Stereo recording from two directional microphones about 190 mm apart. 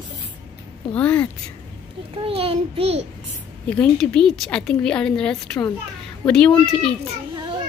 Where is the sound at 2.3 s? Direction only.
30° right (ahead or behind).